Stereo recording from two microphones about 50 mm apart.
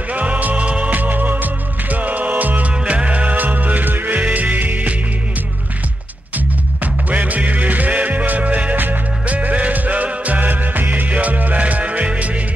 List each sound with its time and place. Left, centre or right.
0.1 s music: right
2.7 s music: centre
6.3 s music: right